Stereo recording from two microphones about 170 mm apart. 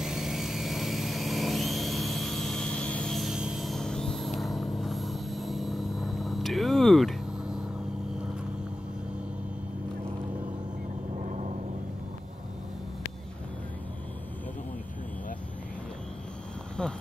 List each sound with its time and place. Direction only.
0.0 s vehicle: centre (ahead or behind)
11.2 s vehicle: 45° right (ahead or behind)